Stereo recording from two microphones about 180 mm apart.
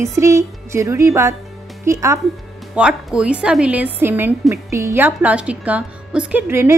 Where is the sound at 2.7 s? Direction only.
5° right (ahead or behind).